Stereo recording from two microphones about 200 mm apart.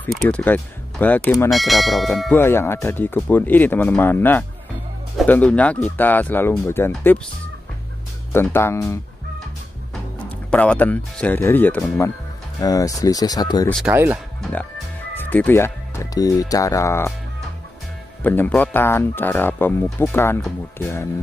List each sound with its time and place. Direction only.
0.0 s speech: 5° left (ahead or behind)
1.5 s church bell: centre (ahead or behind)
2.3 s speech: 10° left (ahead or behind)
8.3 s speech: 10° left (ahead or behind)
10.5 s speech: 5° left (ahead or behind)
12.5 s speech: 15° left (ahead or behind)
13.7 s church bell: centre (ahead or behind)
13.9 s speech: 10° right (ahead or behind)
14.4 s speech: 10° left (ahead or behind)
18.2 s speech: 10° left (ahead or behind)